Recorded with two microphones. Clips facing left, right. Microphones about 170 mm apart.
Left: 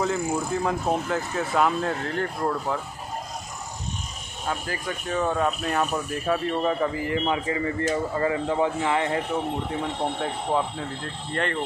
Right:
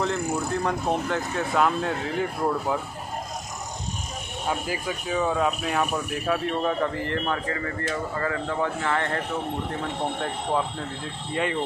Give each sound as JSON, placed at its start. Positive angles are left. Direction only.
{"t": 0.0, "sound": "speech", "side_deg": 0}
{"t": 4.5, "sound": "speech", "side_deg": -15}
{"t": 5.0, "sound": "speech", "side_deg": 0}
{"t": 10.2, "sound": "speech", "side_deg": 5}